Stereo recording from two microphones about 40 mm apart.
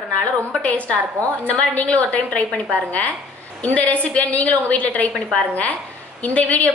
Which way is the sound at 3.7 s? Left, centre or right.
Left.